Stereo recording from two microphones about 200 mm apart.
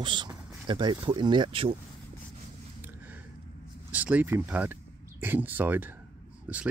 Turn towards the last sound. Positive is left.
turn(degrees=-5)  # may be behind; listen again after turning